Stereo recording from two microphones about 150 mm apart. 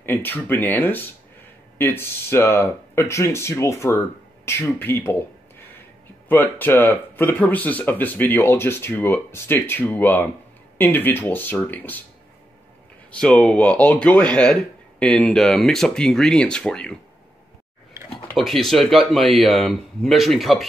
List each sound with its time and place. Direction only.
0.0 s speech: 15° left (ahead or behind)
6.2 s speech: 10° left (ahead or behind)
13.1 s speech: 10° left (ahead or behind)
17.9 s a sound: 20° right (ahead or behind)
18.3 s speech: centre (ahead or behind)